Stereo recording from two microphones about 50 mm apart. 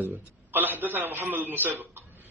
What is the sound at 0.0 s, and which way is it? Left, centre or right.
A man's voice, right.